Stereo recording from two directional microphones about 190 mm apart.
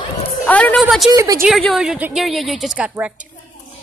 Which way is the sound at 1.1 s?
15° right (ahead or behind).